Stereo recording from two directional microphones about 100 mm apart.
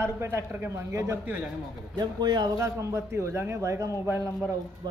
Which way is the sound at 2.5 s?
30° right (ahead or behind).